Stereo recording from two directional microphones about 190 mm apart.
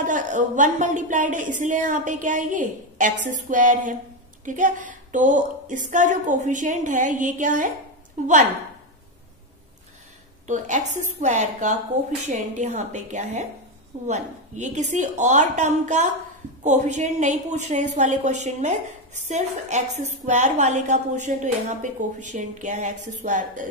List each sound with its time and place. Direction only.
0.0 s a woman's voice: 40° right (ahead or behind)
10.4 s a woman's voice: 40° right (ahead or behind)